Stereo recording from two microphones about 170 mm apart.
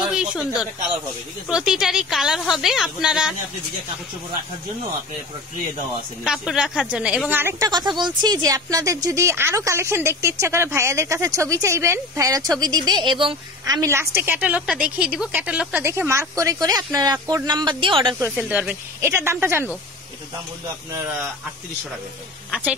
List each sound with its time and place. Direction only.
0.1 s a woman's voice: 5° right (ahead or behind)
6.2 s a woman's voice: 5° right (ahead or behind); by 18.1 s 30° right (ahead or behind)
18.4 s speech: 10° right (ahead or behind)